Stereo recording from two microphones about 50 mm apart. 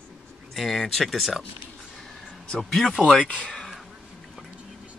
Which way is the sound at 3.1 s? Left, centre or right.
Left.